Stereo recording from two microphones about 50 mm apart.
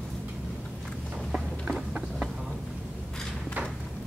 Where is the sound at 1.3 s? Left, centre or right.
Centre.